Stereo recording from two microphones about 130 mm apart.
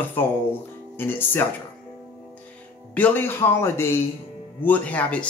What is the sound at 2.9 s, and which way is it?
Speech, 15° left (ahead or behind).